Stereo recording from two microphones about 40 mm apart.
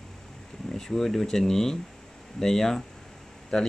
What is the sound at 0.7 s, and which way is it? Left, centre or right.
Mantra, centre.